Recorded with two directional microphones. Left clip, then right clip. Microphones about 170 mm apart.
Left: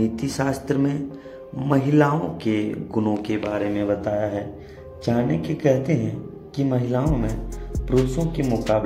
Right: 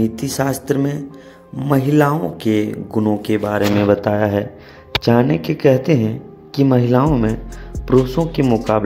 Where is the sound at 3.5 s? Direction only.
35° right (ahead or behind).